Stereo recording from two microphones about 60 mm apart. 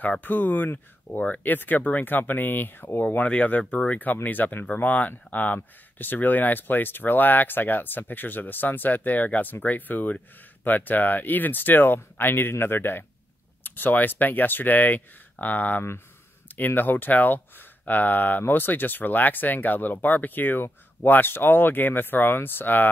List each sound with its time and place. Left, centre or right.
0.2 s speech: left
3.3 s speech: left